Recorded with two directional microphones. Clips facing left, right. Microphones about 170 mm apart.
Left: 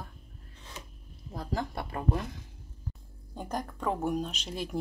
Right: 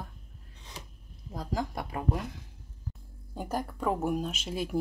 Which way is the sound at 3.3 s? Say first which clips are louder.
Right 2 dB; 5° right (ahead or behind).